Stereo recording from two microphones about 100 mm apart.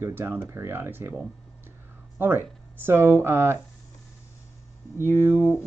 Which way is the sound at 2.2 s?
20° right (ahead or behind).